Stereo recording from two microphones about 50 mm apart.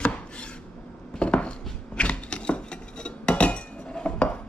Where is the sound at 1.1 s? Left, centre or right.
Left.